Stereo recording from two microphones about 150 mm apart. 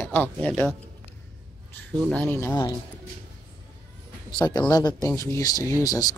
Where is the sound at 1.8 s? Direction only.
10° left (ahead or behind).